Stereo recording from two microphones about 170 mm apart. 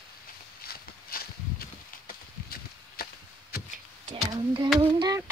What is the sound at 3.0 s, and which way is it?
Chop, 65° left (ahead or behind).